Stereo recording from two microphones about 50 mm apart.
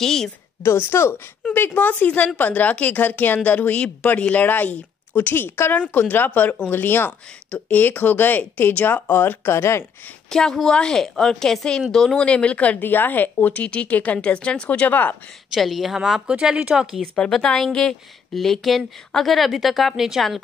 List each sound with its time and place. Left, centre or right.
0.0 s a woman's voice: centre
0.6 s a woman's voice: left
1.5 s a woman's voice: left
7.1 s a woman's voice: left
10.3 s a woman's voice: centre
12.3 s speech: left
12.8 s speech: left
14.7 s a woman's voice: left
15.5 s a woman's voice: centre
16.0 s speech: centre
17.0 s a woman's voice: centre